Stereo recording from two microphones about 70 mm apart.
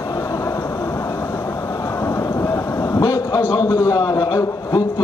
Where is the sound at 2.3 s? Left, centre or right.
Left.